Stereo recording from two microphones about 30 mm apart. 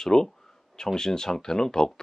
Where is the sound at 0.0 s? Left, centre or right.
Left.